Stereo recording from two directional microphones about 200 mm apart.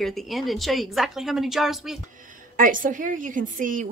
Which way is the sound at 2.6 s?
40° right (ahead or behind).